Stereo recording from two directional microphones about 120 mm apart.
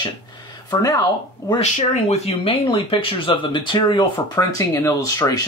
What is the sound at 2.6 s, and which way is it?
Speech, 45° left (ahead or behind).